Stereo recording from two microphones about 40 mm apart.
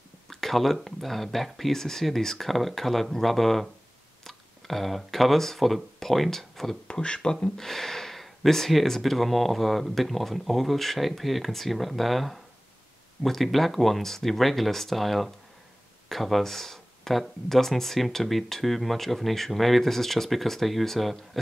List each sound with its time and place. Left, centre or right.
0.3 s speech: centre
6.9 s speech: left
7.4 s speech: centre